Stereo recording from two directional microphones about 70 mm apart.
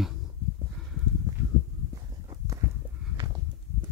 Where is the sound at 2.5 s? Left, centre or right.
Right.